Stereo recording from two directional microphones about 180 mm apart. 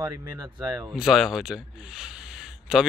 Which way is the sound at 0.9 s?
Centre (ahead or behind).